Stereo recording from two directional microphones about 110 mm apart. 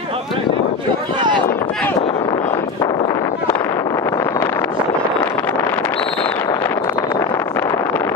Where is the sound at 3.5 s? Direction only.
30° left (ahead or behind).